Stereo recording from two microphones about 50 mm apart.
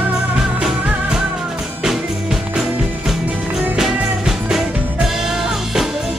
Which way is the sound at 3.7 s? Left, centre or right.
Centre.